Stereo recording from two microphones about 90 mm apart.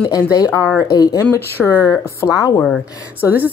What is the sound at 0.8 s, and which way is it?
Speech, 40° left (ahead or behind).